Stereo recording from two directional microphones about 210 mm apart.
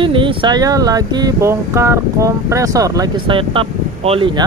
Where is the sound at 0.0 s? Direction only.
25° right (ahead or behind).